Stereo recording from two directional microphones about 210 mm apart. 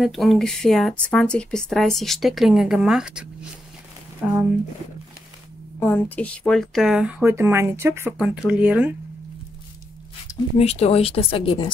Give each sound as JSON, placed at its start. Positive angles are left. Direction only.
{"t": 0.0, "sound": "speech", "side_deg": 0}
{"t": 5.8, "sound": "speech", "side_deg": 10}
{"t": 10.3, "sound": "a sound", "side_deg": 15}
{"t": 10.6, "sound": "speech", "side_deg": 30}